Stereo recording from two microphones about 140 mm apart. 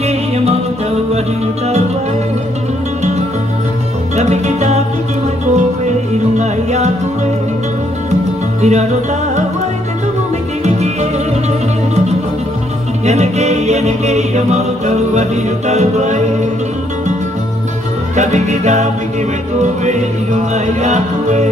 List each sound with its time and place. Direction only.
4.2 s music: 55° right (ahead or behind)
8.1 s music: 55° right (ahead or behind)
10.6 s music: 55° right (ahead or behind)
13.0 s music: 55° right (ahead or behind)
18.1 s music: 55° right (ahead or behind)